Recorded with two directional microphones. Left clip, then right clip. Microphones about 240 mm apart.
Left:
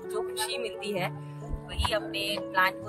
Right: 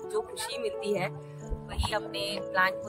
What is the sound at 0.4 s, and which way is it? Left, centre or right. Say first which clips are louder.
Speech: left 1 dB; centre.